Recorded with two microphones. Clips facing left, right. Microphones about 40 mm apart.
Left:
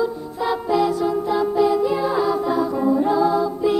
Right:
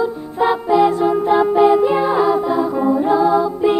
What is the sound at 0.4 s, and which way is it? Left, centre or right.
Music, right.